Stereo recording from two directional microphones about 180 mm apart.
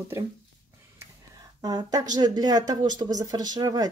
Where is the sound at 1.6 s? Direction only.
20° right (ahead or behind).